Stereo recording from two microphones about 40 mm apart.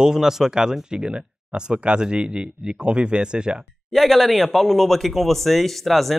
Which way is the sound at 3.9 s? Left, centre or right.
Centre.